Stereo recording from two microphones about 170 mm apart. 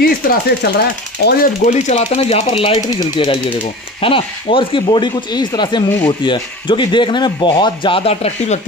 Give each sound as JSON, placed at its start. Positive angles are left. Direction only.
{"t": 0.0, "sound": "speech", "side_deg": 60}
{"t": 1.6, "sound": "speech", "side_deg": 40}